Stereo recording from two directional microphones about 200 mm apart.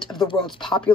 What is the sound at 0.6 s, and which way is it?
Speech, centre (ahead or behind).